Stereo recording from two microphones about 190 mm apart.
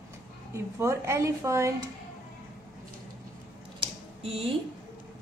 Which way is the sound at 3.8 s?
30° right (ahead or behind).